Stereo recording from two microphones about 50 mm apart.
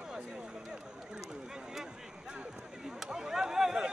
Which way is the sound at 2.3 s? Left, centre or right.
Centre.